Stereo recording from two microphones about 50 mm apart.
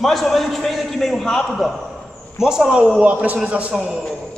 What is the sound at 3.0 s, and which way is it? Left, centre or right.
Speech, right.